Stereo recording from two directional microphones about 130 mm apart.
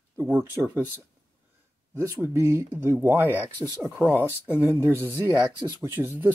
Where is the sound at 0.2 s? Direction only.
15° right (ahead or behind).